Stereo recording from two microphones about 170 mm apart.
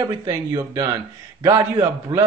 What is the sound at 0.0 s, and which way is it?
A man's voice, 20° right (ahead or behind).